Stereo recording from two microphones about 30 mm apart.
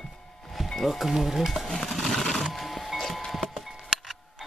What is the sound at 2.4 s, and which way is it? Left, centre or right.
Music, centre.